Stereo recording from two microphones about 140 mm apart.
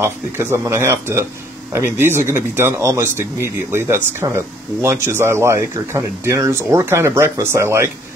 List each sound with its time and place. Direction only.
0.0 s speech: 15° right (ahead or behind)